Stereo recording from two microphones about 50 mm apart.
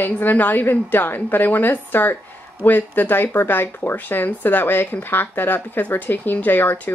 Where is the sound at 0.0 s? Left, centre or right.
Left.